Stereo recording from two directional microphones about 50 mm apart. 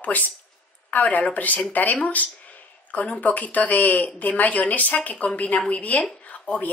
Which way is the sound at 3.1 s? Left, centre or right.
Left.